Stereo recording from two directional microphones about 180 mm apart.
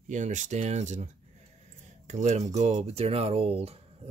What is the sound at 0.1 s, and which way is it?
Speech, 40° right (ahead or behind).